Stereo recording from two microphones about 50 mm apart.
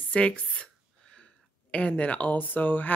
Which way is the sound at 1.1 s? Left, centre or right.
Left.